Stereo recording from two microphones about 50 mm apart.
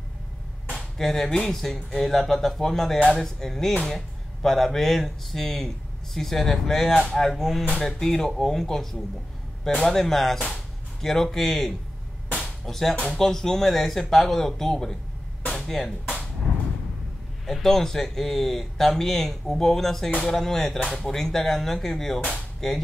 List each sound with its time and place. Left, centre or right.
0.7 s a man's voice: centre
7.2 s a man's voice: centre
15.5 s music: centre
17.5 s a man's voice: centre